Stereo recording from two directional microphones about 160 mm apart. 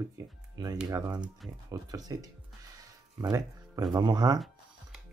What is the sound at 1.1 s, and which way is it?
Speech, 5° right (ahead or behind).